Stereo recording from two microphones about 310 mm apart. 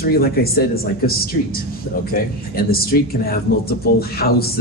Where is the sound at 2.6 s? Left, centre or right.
Left.